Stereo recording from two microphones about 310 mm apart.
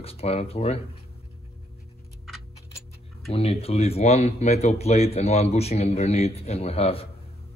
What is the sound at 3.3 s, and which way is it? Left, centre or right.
Speech, centre.